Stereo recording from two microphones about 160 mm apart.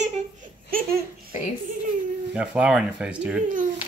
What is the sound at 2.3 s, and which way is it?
Speech, 5° right (ahead or behind).